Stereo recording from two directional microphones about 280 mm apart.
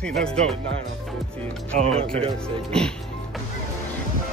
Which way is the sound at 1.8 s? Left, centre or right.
Right.